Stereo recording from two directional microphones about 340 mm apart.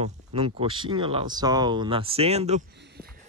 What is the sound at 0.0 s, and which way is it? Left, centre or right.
Speech, centre.